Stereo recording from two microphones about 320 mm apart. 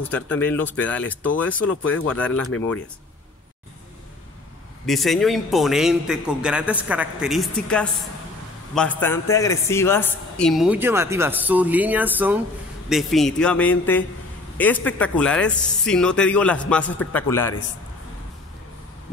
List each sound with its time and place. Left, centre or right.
0.0 s a woman's voice: centre
1.7 s speech: left
2.0 s a woman's voice: centre
4.8 s a woman's voice: centre